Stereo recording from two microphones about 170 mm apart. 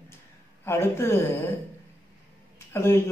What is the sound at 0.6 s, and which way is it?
Speech, 15° left (ahead or behind).